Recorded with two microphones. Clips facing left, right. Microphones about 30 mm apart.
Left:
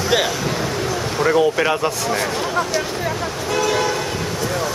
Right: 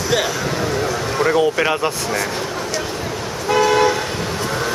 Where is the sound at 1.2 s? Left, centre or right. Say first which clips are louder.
Even; centre.